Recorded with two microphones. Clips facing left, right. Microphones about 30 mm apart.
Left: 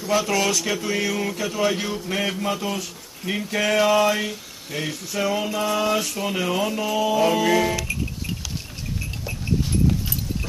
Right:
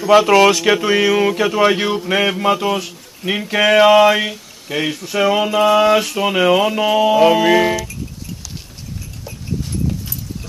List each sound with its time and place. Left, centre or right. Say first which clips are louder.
0.0 s speech: right 11 dB; right